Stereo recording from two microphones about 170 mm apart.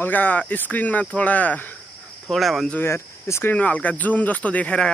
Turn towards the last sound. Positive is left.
turn(degrees=5)  # may be behind; listen again after turning